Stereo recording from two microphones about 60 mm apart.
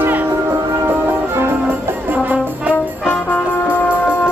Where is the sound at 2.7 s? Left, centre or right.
Left.